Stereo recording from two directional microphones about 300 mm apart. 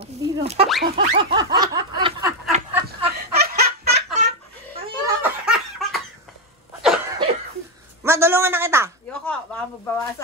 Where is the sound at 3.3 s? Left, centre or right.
Right.